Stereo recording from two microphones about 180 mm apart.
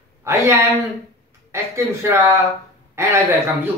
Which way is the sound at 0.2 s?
15° right (ahead or behind).